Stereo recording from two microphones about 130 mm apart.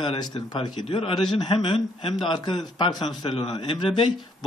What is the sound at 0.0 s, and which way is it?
A man's voice, 40° left (ahead or behind).